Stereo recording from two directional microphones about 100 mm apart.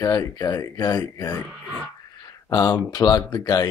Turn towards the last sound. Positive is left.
turn(degrees=40)  # may be behind; listen again after turning